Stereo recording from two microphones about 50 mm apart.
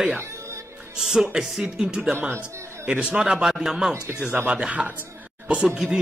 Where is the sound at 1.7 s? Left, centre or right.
Centre.